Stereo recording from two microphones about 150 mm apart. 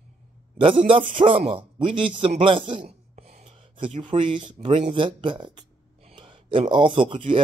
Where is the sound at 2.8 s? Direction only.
55° right (ahead or behind).